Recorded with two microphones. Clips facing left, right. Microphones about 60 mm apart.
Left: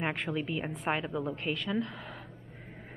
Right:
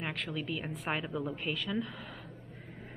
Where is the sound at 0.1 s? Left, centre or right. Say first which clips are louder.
Left 4 dB; centre.